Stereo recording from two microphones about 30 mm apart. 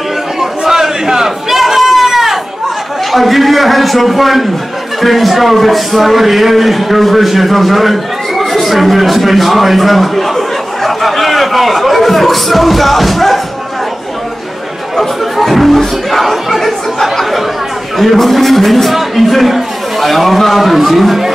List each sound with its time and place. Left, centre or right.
0.4 s a sound: centre
3.1 s a man's voice: centre
15.4 s music: centre
15.8 s a man's voice: centre